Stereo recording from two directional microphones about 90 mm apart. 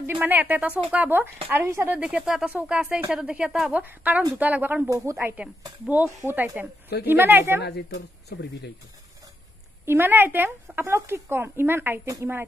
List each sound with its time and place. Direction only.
0.0 s speech: 20° right (ahead or behind)
2.0 s speech: 10° right (ahead or behind)
4.8 s speech: 40° right (ahead or behind)
5.2 s speech: 15° right (ahead or behind)
9.8 s speech: 25° right (ahead or behind)